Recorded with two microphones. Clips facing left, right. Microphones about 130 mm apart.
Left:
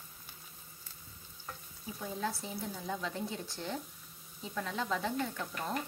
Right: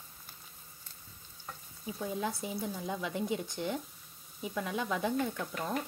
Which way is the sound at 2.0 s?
15° right (ahead or behind).